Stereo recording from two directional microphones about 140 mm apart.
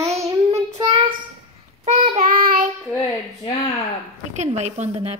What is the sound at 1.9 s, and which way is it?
Child singing, 55° right (ahead or behind).